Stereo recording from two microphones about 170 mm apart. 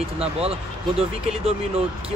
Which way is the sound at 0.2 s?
35° right (ahead or behind).